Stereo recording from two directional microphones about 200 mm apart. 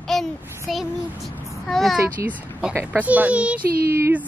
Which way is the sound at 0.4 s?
10° right (ahead or behind).